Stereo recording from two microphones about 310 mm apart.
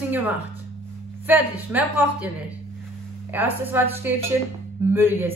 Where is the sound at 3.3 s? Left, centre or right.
Centre.